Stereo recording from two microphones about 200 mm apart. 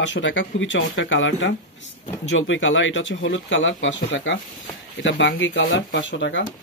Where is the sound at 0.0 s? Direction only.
70° left (ahead or behind).